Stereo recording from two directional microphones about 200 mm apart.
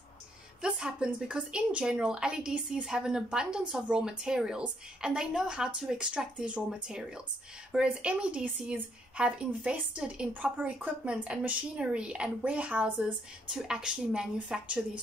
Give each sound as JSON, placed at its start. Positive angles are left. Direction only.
{"t": 0.6, "sound": "a woman's voice", "side_deg": 0}